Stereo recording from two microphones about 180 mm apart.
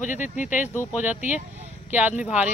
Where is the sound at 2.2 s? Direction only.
5° right (ahead or behind).